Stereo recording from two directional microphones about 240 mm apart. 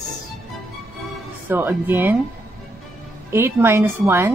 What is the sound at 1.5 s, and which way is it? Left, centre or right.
Speech, centre.